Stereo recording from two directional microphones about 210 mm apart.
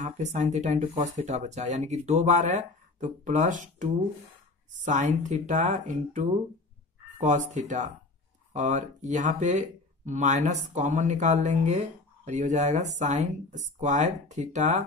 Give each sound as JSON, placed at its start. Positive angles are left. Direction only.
{"t": 0.0, "sound": "speech", "side_deg": -35}